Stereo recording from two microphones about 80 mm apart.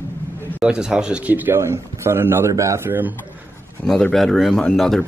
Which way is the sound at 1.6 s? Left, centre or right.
Right.